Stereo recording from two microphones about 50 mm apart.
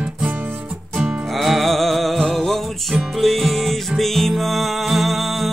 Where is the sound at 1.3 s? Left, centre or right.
Centre.